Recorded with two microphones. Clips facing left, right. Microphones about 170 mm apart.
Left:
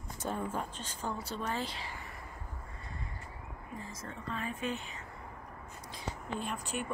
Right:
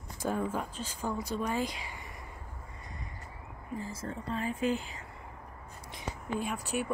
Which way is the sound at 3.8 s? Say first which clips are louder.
Right 5 dB; 30° right (ahead or behind).